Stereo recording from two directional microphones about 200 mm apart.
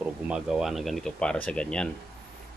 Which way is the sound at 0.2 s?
5° right (ahead or behind).